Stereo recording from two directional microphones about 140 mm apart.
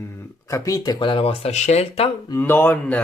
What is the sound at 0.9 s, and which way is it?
Speech, 35° left (ahead or behind).